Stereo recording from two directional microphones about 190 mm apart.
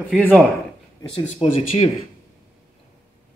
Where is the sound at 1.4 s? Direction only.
30° left (ahead or behind).